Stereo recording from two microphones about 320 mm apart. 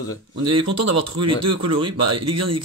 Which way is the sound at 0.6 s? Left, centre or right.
Right.